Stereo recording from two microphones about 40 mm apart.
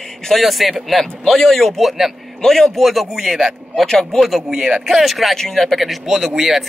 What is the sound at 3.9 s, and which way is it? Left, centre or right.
Speech, centre.